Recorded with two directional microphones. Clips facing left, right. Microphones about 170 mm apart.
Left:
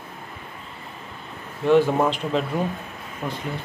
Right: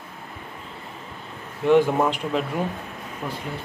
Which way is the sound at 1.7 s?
15° right (ahead or behind).